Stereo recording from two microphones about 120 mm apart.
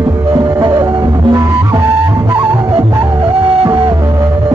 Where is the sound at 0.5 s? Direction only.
30° right (ahead or behind).